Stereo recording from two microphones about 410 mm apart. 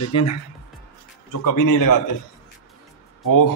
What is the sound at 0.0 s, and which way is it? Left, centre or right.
Speech, left.